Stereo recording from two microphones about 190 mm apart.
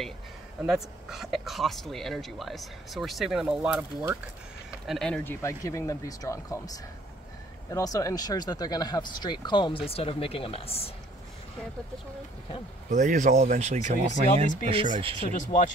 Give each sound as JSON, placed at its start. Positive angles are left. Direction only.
{"t": 0.7, "sound": "speech", "side_deg": 0}
{"t": 4.8, "sound": "speech", "side_deg": 0}
{"t": 12.9, "sound": "speech", "side_deg": -40}
{"t": 15.0, "sound": "speech", "side_deg": -30}
{"t": 15.3, "sound": "speech", "side_deg": 45}